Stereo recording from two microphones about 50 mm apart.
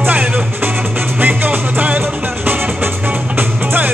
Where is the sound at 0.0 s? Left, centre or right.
Right.